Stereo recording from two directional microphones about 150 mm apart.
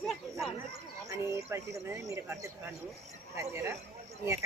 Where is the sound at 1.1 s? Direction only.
20° right (ahead or behind).